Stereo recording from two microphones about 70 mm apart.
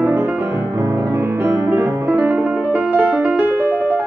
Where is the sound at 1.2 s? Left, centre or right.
Right.